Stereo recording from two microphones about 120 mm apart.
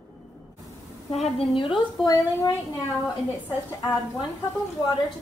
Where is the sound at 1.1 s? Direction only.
65° left (ahead or behind).